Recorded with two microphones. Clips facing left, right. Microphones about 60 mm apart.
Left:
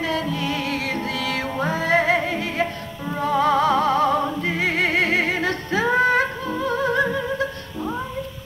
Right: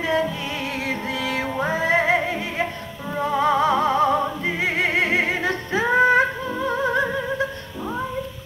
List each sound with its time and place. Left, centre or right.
0.0 s music: centre